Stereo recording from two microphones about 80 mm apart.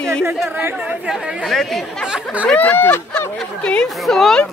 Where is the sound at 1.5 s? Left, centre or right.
Centre.